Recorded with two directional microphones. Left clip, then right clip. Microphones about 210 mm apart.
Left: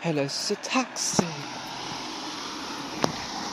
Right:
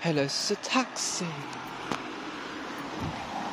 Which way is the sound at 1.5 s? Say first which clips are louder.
Left 1 dB; 30° left (ahead or behind).